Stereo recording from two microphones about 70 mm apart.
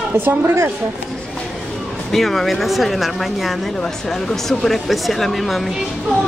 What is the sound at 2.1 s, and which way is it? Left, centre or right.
Speech, centre.